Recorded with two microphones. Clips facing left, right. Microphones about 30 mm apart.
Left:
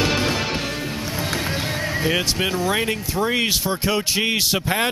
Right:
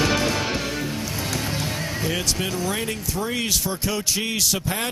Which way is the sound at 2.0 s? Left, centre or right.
Left.